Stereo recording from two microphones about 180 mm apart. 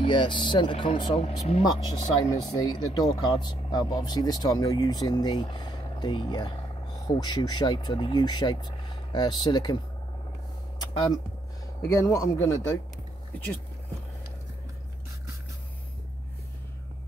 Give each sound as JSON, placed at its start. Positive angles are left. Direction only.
{"t": 0.0, "sound": "speech", "side_deg": 25}
{"t": 2.2, "sound": "speech", "side_deg": 20}
{"t": 10.8, "sound": "speech", "side_deg": 20}